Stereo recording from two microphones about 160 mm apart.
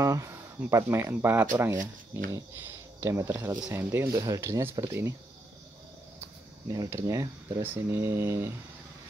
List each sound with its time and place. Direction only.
0.0 s speech: 20° right (ahead or behind)
3.0 s speech: 15° right (ahead or behind)
6.7 s speech: 20° right (ahead or behind)